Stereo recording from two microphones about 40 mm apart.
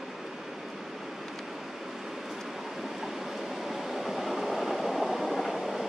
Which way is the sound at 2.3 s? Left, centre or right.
Centre.